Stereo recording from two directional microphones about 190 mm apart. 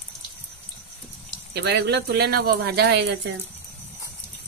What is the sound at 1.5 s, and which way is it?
Speech, 60° right (ahead or behind).